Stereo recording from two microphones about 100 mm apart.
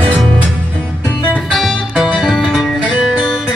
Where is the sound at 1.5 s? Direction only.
Centre (ahead or behind).